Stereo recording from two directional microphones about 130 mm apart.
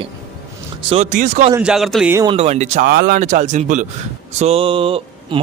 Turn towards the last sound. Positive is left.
turn(degrees=-45)  # may be behind; listen again after turning